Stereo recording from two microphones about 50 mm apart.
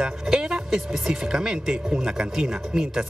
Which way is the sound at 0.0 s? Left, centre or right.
Centre.